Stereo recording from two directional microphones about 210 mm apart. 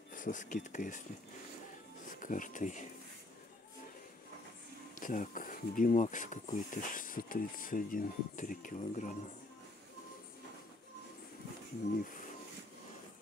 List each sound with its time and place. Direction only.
0.1 s speech: 40° left (ahead or behind)
2.1 s speech: 40° left (ahead or behind)
5.0 s speech: 40° left (ahead or behind)
11.9 s speech: 40° left (ahead or behind)